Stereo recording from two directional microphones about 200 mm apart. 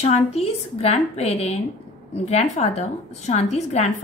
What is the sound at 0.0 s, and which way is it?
A woman's voice, 30° left (ahead or behind).